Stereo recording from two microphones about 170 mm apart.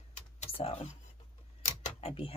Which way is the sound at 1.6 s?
45° left (ahead or behind).